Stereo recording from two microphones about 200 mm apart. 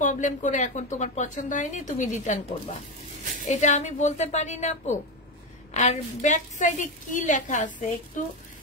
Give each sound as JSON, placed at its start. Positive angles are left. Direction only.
{"t": 0.0, "sound": "a woman's voice", "side_deg": 40}
{"t": 3.4, "sound": "a woman's voice", "side_deg": 35}